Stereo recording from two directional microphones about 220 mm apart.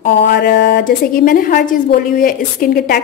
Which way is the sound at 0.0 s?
45° left (ahead or behind).